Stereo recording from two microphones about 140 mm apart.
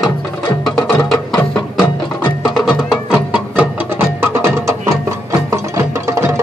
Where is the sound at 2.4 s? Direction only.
Centre (ahead or behind).